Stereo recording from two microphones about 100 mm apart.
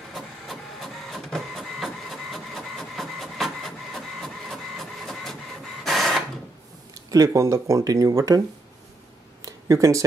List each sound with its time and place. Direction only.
0.1 s printer: centre (ahead or behind)
7.1 s speech: 35° right (ahead or behind)
9.4 s a sound: 35° right (ahead or behind)